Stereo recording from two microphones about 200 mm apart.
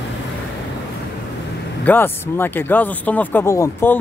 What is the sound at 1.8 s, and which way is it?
Speech, 10° left (ahead or behind).